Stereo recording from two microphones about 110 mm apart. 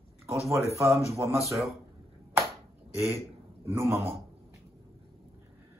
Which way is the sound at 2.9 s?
25° right (ahead or behind).